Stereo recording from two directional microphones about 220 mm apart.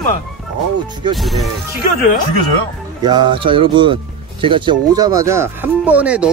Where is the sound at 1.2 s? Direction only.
Centre (ahead or behind).